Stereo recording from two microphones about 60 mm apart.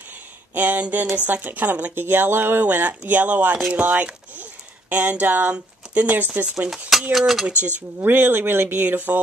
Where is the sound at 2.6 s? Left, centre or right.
Right.